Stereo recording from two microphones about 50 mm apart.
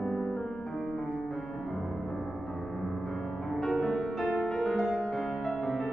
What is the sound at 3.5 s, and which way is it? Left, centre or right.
Music, centre.